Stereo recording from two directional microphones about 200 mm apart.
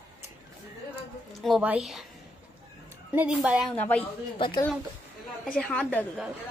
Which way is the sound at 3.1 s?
5° right (ahead or behind).